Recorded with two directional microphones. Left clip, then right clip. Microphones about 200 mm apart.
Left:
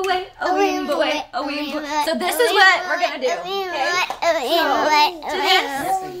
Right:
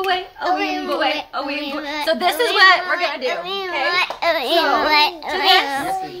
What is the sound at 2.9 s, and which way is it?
A child's voice, 10° left (ahead or behind).